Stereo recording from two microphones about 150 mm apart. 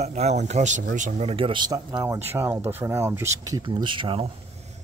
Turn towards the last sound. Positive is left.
turn(degrees=-35)  # may be behind; listen again after turning